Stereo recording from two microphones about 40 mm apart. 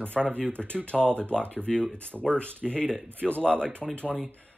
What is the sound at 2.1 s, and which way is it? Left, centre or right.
Speech, centre.